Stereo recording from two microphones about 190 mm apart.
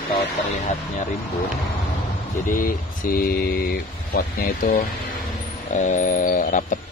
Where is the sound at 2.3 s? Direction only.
45° left (ahead or behind).